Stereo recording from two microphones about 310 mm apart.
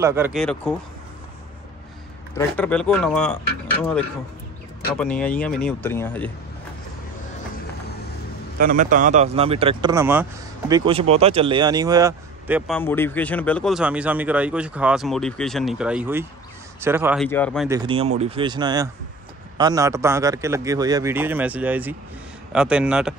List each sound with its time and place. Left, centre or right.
0.0 s speech: centre
2.3 s speech: centre
4.9 s speech: centre
8.5 s speech: right; by 17.6 s centre
17.6 s speech: centre